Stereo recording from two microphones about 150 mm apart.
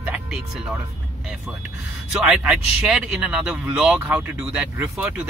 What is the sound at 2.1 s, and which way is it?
Speech, centre (ahead or behind).